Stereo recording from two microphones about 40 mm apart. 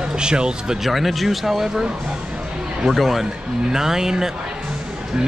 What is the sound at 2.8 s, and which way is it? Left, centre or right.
Speech, centre.